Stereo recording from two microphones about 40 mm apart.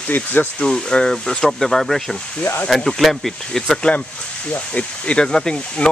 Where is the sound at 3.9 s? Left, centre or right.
Left.